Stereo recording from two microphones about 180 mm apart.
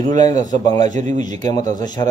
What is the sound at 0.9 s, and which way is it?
Speech, 45° right (ahead or behind).